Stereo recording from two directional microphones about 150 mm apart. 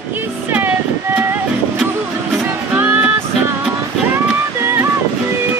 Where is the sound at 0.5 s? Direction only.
10° right (ahead or behind).